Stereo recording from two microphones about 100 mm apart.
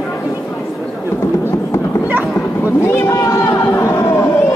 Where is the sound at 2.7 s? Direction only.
25° left (ahead or behind).